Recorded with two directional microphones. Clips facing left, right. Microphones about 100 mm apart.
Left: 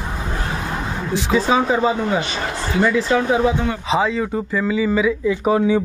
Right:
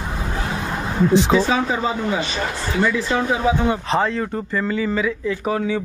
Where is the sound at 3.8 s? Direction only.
Centre (ahead or behind); by 5.8 s 20° left (ahead or behind).